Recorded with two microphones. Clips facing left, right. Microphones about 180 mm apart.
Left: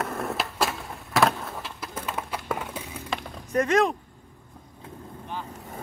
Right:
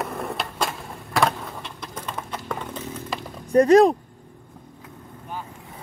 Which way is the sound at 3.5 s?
35° right (ahead or behind).